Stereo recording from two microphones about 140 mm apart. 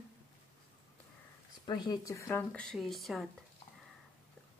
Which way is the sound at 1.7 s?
30° left (ahead or behind).